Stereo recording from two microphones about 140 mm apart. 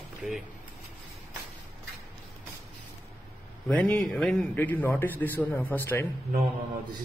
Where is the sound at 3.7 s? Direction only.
10° left (ahead or behind).